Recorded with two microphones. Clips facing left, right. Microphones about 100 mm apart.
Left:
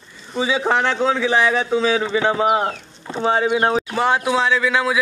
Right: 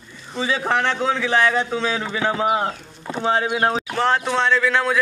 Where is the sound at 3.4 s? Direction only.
20° left (ahead or behind).